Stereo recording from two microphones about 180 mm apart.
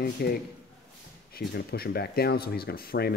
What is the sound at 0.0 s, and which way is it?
Speech, 60° left (ahead or behind).